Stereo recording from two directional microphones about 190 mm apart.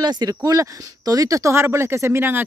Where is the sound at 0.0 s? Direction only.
20° right (ahead or behind).